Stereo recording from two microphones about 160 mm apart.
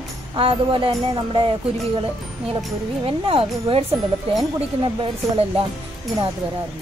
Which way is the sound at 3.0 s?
35° right (ahead or behind).